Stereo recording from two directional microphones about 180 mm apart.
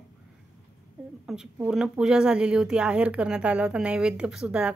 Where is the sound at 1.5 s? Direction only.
5° right (ahead or behind).